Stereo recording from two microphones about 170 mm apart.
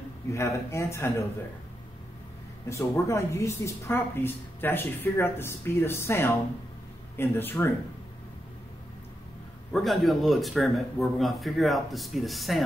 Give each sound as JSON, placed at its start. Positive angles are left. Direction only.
{"t": 0.3, "sound": "a woman's voice", "side_deg": 15}
{"t": 2.7, "sound": "a woman's voice", "side_deg": 15}
{"t": 9.7, "sound": "a man's voice", "side_deg": 0}